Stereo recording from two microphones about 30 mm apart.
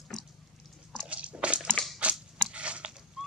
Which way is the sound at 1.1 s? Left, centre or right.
Right.